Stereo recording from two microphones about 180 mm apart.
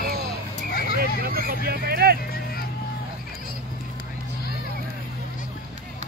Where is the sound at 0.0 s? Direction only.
55° right (ahead or behind).